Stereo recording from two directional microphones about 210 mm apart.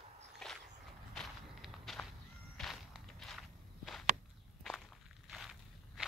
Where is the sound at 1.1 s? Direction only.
Centre (ahead or behind).